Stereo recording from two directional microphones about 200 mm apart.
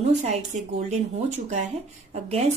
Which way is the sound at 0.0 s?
35° right (ahead or behind).